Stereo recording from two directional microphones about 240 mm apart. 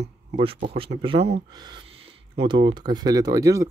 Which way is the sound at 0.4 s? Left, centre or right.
Right.